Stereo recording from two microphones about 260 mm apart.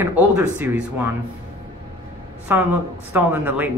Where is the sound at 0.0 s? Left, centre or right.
Centre.